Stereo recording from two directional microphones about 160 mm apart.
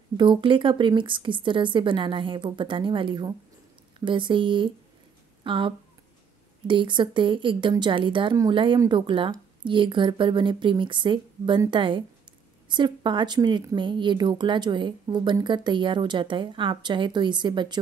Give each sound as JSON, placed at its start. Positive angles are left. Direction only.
{"t": 0.2, "sound": "speech", "side_deg": -30}